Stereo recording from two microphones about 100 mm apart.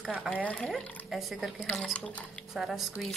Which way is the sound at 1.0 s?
Centre (ahead or behind).